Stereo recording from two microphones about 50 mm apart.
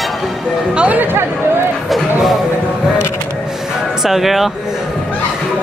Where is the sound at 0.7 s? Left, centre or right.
Right.